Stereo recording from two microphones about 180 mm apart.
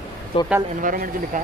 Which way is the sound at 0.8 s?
50° right (ahead or behind).